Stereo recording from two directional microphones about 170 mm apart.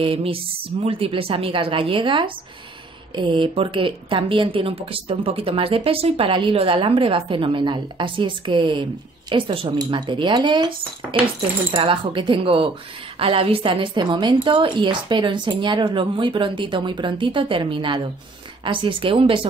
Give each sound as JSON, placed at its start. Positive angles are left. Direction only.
{"t": 0.0, "sound": "a woman's voice", "side_deg": -35}